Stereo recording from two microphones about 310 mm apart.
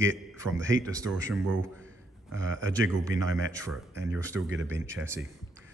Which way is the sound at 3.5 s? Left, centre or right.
Centre.